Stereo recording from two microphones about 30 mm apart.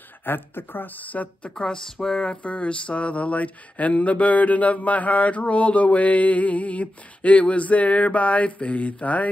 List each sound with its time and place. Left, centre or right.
0.7 s speech: left
1.5 s speech: left
2.4 s a sound: left